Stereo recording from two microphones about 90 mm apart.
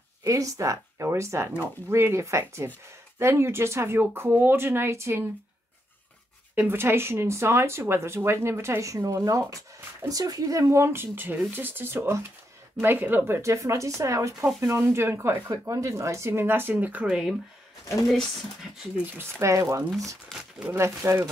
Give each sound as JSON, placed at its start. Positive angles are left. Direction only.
{"t": 0.2, "sound": "speech", "side_deg": -40}
{"t": 6.5, "sound": "speech", "side_deg": -20}
{"t": 13.3, "sound": "speech", "side_deg": -35}
{"t": 19.4, "sound": "speech", "side_deg": -35}
{"t": 20.2, "sound": "speech", "side_deg": -5}
{"t": 20.6, "sound": "speech", "side_deg": -30}